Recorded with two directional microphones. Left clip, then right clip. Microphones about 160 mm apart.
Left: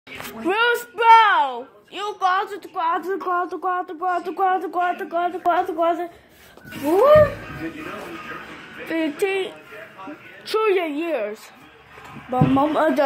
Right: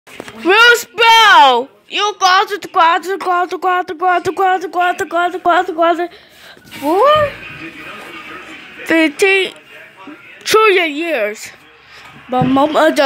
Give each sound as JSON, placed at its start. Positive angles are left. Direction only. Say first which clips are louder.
{"t": 0.4, "sound": "a woman's voice", "louder": "right 11 dB", "side_deg": -35}
{"t": 3.1, "sound": "speech", "louder": "right 8 dB", "side_deg": -20}
{"t": 3.8, "sound": "a woman's voice", "louder": "right 10 dB", "side_deg": -40}
{"t": 8.8, "sound": "a woman's voice", "louder": "right 11 dB", "side_deg": -40}
{"t": 10.5, "sound": "a woman's voice", "louder": "right 10 dB", "side_deg": -35}